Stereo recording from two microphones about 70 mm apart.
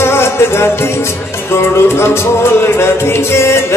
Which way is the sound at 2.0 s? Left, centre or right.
Left.